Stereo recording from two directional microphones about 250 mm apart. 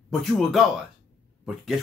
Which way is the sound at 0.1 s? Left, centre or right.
Centre.